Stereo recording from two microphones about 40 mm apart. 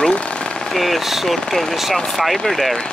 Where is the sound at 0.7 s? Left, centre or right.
Centre.